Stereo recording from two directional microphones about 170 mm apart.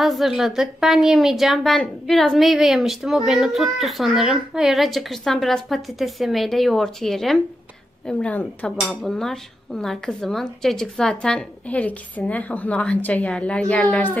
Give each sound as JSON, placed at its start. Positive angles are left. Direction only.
{"t": 0.0, "sound": "speech", "side_deg": 0}